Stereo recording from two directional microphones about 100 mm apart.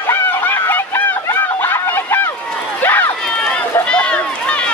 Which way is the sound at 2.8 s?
20° left (ahead or behind).